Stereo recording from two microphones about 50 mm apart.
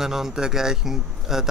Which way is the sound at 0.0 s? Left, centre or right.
Centre.